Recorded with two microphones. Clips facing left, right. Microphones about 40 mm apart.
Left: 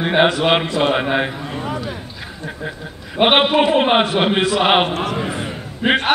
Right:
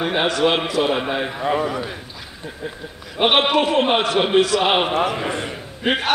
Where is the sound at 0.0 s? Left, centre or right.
Centre.